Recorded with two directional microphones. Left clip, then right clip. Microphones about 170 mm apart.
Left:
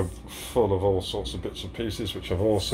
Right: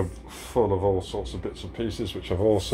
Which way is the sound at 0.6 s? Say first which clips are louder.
Even; 10° right (ahead or behind).